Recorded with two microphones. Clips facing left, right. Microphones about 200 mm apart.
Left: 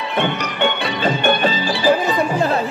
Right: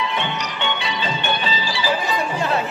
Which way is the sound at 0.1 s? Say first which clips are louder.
Left 5 dB; 55° left (ahead or behind).